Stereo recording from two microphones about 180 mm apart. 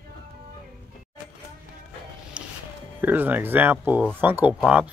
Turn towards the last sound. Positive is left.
turn(degrees=-5)  # may be behind; listen again after turning